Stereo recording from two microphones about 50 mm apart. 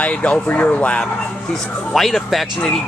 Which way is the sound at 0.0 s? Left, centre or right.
Left.